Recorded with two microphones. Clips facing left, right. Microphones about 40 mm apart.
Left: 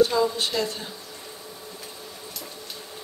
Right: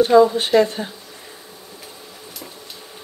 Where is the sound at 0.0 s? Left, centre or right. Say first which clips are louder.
Right 8 dB; right.